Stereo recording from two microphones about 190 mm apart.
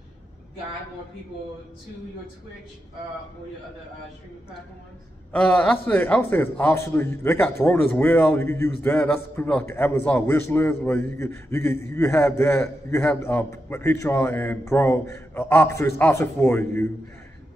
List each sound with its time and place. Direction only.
5.3 s a man's voice: 5° left (ahead or behind)